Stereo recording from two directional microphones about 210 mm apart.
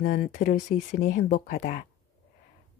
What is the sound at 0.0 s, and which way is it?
Speech, 55° left (ahead or behind).